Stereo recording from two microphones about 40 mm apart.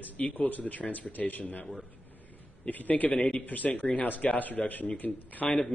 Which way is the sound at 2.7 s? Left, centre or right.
Left.